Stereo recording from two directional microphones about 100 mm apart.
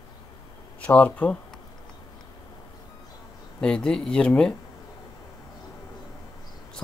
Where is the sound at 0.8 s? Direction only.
15° left (ahead or behind).